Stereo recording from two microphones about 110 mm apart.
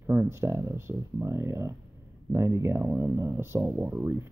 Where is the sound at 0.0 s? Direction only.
20° right (ahead or behind).